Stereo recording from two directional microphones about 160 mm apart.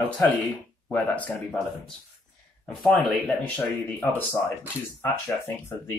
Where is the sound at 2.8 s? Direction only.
10° left (ahead or behind).